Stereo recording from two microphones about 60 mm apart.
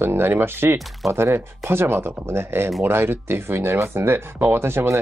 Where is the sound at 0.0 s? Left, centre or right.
Right.